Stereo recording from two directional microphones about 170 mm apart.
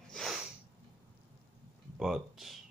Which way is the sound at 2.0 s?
Centre (ahead or behind).